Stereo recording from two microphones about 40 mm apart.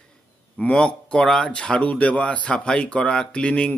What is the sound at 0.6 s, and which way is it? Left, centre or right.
Speech, left.